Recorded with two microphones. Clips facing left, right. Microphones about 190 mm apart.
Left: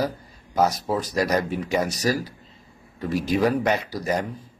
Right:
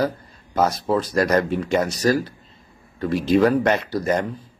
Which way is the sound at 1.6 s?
5° left (ahead or behind).